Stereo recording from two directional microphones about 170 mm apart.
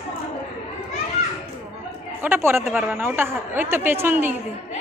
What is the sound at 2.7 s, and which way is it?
A woman's voice, 5° right (ahead or behind).